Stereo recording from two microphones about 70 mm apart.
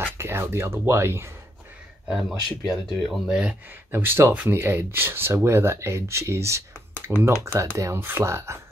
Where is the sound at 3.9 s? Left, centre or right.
Right.